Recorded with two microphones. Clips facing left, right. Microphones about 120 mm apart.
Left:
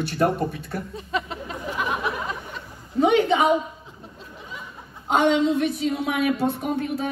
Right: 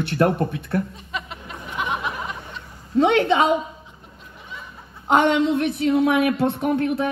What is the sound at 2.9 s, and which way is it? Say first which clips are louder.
Speech: right 2 dB; 70° right (ahead or behind).